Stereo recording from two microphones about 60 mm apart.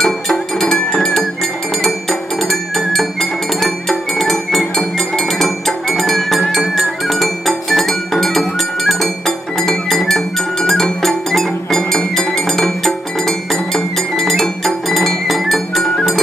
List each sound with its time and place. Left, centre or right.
0.0 s music: centre